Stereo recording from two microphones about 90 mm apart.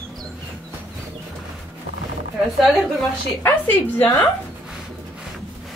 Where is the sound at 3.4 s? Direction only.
20° left (ahead or behind).